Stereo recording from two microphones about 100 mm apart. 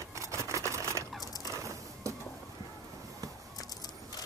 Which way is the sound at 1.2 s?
40° left (ahead or behind).